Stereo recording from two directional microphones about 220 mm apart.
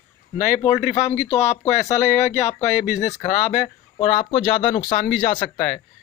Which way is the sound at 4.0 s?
20° left (ahead or behind).